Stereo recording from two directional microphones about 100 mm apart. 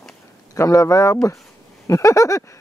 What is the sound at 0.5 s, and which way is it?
Speech, 30° left (ahead or behind).